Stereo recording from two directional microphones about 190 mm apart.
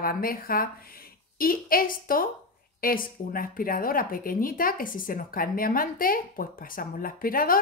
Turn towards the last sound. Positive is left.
turn(degrees=50)  # may be behind; listen again after turning